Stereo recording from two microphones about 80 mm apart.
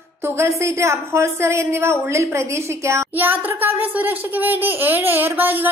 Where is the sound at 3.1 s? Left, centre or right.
Right.